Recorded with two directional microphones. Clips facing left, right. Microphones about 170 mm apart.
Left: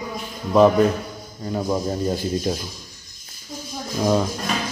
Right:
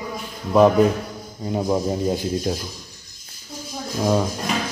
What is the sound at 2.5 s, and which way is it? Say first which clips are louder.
Speech: left 1 dB; centre (ahead or behind).